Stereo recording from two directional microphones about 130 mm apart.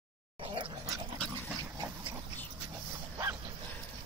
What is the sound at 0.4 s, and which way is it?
Dog, 40° right (ahead or behind).